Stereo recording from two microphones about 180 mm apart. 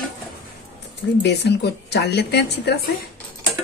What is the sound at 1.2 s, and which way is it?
Speech, 70° left (ahead or behind).